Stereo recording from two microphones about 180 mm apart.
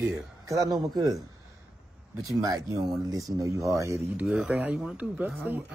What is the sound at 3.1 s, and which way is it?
A man's voice, 20° right (ahead or behind).